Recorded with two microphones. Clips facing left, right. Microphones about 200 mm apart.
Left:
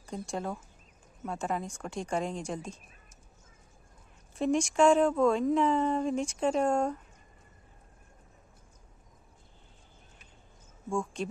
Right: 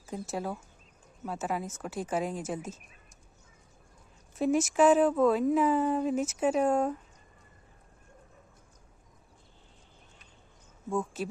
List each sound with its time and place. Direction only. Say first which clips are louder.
0.0 s a woman's voice: right 1 dB; 5° right (ahead or behind)
4.4 s a woman's voice: right 1 dB; 5° right (ahead or behind)
10.9 s a woman's voice: right 1 dB; 5° right (ahead or behind)